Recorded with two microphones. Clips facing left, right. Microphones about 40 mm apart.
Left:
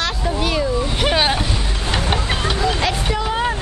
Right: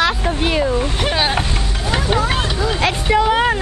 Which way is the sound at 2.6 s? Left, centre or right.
Right.